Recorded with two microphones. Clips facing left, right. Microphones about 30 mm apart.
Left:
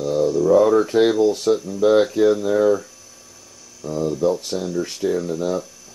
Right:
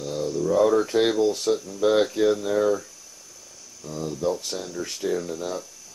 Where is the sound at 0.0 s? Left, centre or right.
Centre.